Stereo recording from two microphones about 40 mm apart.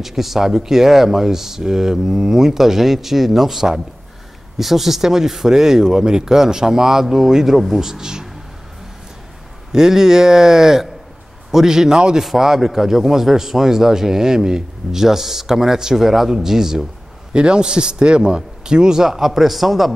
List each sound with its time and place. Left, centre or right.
0.0 s a man's voice: centre
9.7 s a man's voice: centre
12.2 s a man's voice: centre
17.3 s a man's voice: right; by 19.9 s centre